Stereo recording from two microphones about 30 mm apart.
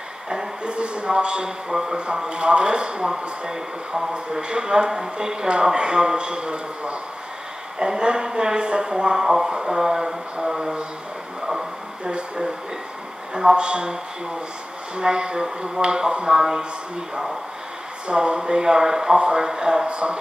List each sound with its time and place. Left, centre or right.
0.7 s a sound: right
1.7 s speech: centre
2.1 s a man's voice: right
3.1 s speech: centre
4.4 s a man's voice: right
9.2 s speech: centre
11.4 s radio: centre
13.3 s speech: right
13.7 s a man's voice: right
15.0 s speech: right
18.0 s speech: right
19.9 s a man's voice: right